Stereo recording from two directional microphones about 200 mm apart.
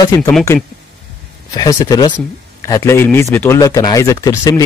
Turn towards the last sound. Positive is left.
turn(degrees=20)  # may be behind; listen again after turning